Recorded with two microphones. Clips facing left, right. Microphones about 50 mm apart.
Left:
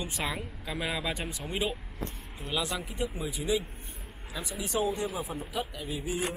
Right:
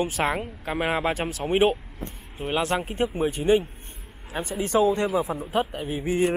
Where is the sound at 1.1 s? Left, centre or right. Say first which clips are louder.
Right 8 dB; right.